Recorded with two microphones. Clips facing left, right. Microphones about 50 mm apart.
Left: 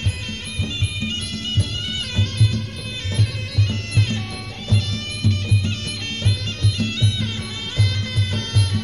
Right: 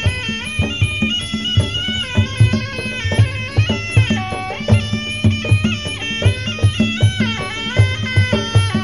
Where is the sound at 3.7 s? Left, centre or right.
Right.